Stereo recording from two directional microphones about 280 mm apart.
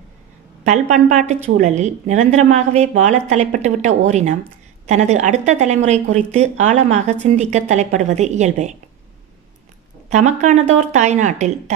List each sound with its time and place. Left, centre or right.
0.7 s speech: right
10.0 s speech: right